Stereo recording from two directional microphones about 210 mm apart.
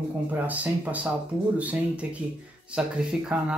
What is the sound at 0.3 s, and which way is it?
Speech, 5° right (ahead or behind).